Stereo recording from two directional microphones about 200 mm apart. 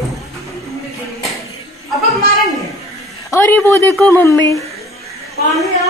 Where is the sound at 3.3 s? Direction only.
10° left (ahead or behind).